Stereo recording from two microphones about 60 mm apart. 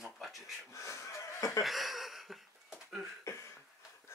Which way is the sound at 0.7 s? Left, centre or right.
Left.